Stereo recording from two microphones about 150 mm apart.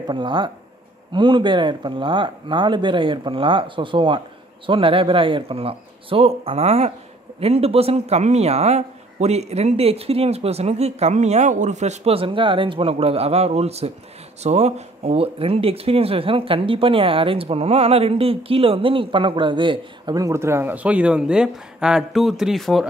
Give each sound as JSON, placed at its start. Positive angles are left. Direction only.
{"t": 0.0, "sound": "speech", "side_deg": -30}